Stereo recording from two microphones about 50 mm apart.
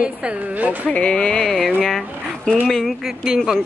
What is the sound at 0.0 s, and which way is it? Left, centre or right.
Speech, centre.